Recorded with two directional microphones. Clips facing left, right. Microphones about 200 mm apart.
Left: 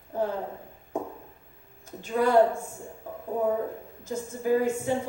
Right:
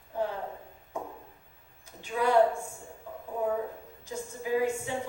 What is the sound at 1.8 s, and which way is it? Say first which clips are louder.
Speech: left 4 dB; 45° left (ahead or behind).